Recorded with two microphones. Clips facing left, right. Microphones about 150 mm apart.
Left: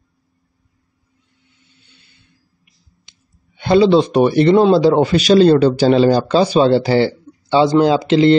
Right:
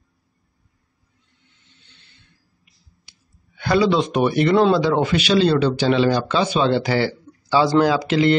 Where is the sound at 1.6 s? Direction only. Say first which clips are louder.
Left 4 dB; 10° left (ahead or behind).